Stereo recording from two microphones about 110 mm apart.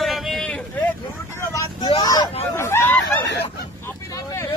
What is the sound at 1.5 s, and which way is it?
Vehicle, 30° left (ahead or behind).